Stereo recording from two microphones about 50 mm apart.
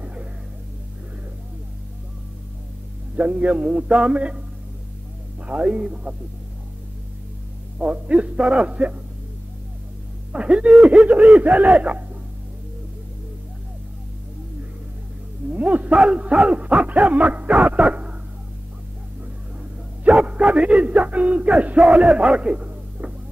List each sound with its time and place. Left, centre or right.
0.0 s a sound: right
3.2 s dog: right
5.5 s dog: right
7.8 s dog: right
10.3 s dog: right
15.5 s dog: right
20.1 s dog: right
21.8 s a man's voice: centre